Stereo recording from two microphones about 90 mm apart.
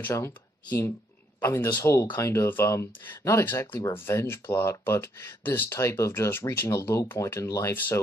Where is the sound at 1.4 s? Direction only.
25° left (ahead or behind).